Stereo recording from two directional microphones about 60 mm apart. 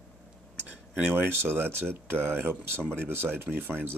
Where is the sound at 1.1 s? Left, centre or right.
Right.